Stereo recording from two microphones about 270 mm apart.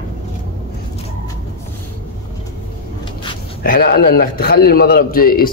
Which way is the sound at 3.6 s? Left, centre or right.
Left.